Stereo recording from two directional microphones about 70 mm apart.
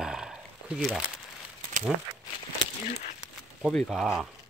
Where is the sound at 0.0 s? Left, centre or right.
Centre.